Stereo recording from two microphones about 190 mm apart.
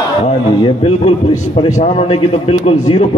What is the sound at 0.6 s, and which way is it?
A man's voice, 30° left (ahead or behind).